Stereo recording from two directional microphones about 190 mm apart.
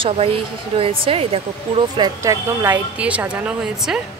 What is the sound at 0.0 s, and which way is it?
A woman's voice, 30° right (ahead or behind).